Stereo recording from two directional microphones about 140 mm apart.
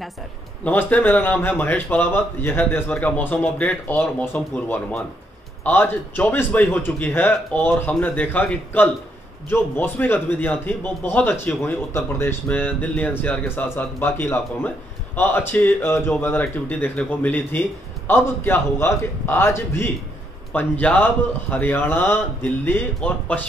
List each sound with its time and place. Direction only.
0.7 s a man's voice: 10° left (ahead or behind)